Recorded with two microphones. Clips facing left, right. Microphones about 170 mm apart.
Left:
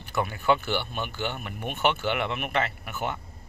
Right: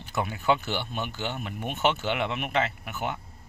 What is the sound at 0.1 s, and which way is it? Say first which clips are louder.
Speech: left 1 dB; 15° right (ahead or behind).